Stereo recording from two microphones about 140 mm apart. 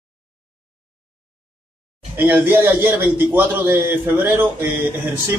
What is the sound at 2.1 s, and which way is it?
Speech, 10° right (ahead or behind).